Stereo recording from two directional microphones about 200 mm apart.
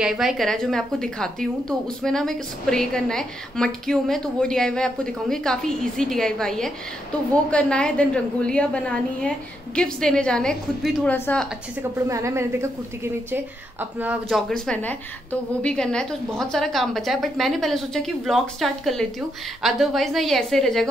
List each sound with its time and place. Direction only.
0.0 s a woman's voice: 5° right (ahead or behind)
12.1 s a woman's voice: 15° right (ahead or behind); by 20.9 s centre (ahead or behind)